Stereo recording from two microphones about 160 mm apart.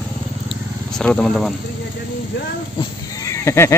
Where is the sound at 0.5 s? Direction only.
5° left (ahead or behind).